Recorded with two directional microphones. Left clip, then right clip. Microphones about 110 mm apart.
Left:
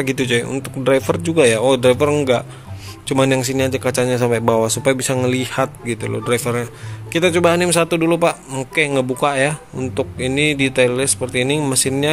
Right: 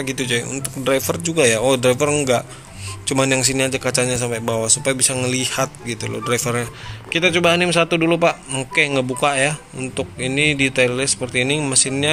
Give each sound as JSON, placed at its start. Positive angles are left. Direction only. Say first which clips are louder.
{"t": 0.0, "sound": "a man's voice", "louder": "left 4 dB", "side_deg": 45}
{"t": 4.2, "sound": "speech", "louder": "left 6 dB", "side_deg": 45}
{"t": 4.8, "sound": "a man's voice", "louder": "left 3 dB", "side_deg": 40}